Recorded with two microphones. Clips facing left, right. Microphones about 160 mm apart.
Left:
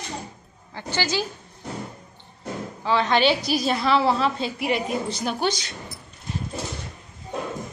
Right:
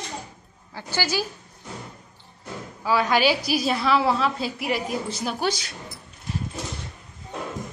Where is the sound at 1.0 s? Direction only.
20° left (ahead or behind).